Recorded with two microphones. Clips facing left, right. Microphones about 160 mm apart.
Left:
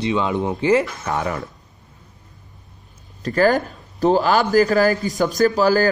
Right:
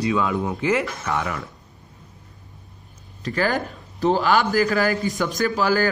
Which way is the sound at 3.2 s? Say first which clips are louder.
Left 6 dB; 45° left (ahead or behind).